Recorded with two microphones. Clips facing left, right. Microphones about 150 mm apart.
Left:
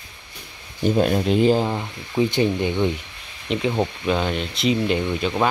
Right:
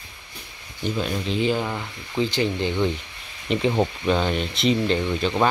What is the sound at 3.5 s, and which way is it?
Speech, centre (ahead or behind).